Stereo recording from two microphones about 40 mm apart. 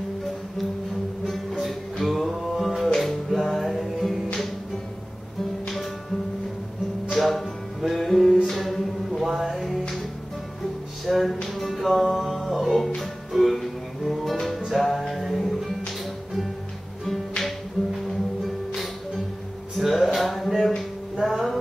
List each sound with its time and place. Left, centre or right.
1.2 s music: centre
7.2 s music: centre
11.1 s music: centre
17.4 s music: centre